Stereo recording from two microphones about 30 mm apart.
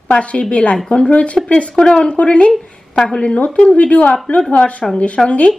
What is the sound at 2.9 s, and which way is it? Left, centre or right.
Speech, left.